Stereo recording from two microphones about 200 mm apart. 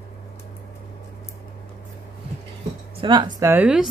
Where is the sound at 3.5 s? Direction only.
5° right (ahead or behind).